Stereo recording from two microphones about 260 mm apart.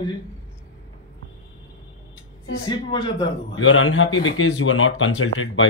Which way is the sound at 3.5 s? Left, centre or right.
Left.